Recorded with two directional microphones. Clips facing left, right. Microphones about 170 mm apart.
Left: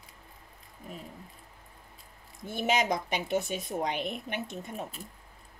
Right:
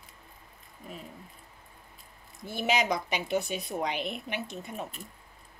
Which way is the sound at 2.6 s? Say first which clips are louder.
Even; 50° left (ahead or behind).